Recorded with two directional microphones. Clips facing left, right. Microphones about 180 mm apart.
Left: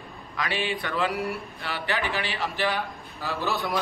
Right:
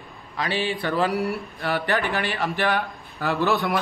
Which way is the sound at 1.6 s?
50° right (ahead or behind).